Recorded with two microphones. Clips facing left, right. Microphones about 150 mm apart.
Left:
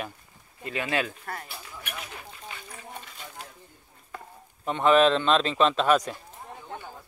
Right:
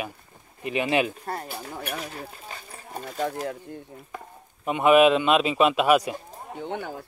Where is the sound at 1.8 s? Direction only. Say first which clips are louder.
Right 6 dB; 35° right (ahead or behind).